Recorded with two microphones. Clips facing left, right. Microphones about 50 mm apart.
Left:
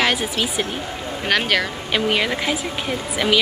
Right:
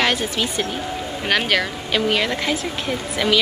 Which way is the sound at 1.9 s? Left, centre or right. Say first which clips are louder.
Even; centre.